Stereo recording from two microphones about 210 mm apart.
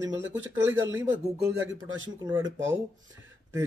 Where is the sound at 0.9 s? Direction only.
15° right (ahead or behind).